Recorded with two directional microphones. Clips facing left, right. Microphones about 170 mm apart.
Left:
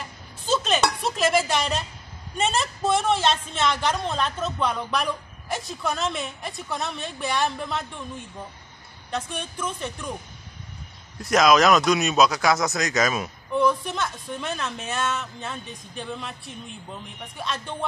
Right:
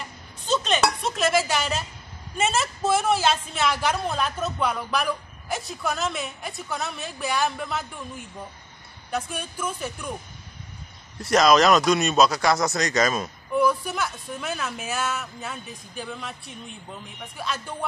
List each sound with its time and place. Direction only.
0.5 s a sound: centre (ahead or behind)
2.3 s a woman's voice: 5° right (ahead or behind)
9.4 s speech: 5° right (ahead or behind)
11.1 s a woman's voice: centre (ahead or behind)